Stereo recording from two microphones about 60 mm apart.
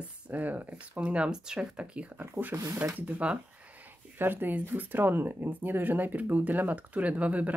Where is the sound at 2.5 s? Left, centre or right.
Right.